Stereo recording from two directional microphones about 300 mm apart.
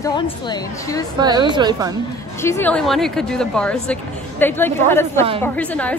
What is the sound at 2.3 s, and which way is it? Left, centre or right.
A woman's voice, centre.